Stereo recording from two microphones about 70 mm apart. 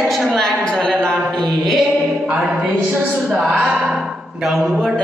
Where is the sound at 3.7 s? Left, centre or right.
Centre.